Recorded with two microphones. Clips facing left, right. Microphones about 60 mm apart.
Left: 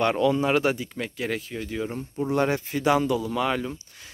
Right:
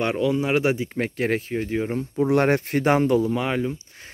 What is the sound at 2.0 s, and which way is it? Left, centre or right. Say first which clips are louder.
Speech: right 4 dB; right.